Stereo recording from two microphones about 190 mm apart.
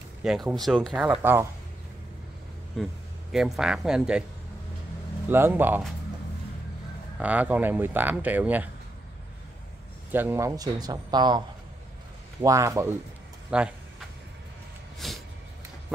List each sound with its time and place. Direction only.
0.2 s speech: centre (ahead or behind)
2.8 s a man's voice: centre (ahead or behind)
5.3 s speech: 10° right (ahead or behind)
7.2 s speech: 10° right (ahead or behind)
10.1 s speech: 10° right (ahead or behind)
13.5 s speech: 5° right (ahead or behind)
15.0 s a sound: centre (ahead or behind)